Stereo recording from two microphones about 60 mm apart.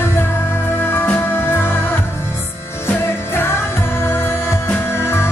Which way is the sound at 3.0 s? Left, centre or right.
Left.